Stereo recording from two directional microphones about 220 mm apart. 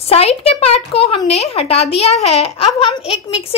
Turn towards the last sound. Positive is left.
turn(degrees=25)  # may be behind; listen again after turning